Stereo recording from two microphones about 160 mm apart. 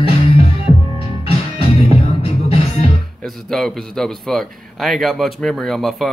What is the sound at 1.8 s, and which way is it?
Music, 40° left (ahead or behind).